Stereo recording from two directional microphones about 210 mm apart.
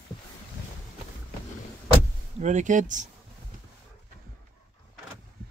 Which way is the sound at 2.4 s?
35° right (ahead or behind).